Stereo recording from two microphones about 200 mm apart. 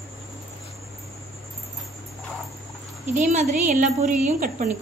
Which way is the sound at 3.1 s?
35° right (ahead or behind).